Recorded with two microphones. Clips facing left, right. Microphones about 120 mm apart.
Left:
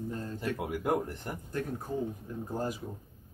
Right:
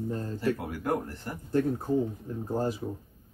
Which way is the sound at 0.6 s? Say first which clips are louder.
Even; 20° left (ahead or behind).